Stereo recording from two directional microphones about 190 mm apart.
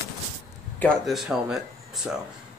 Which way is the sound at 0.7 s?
5° left (ahead or behind).